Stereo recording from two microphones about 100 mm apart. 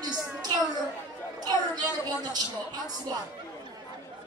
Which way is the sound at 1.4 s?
40° right (ahead or behind).